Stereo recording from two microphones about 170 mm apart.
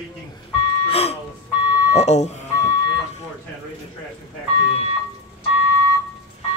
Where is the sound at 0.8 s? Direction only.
35° left (ahead or behind).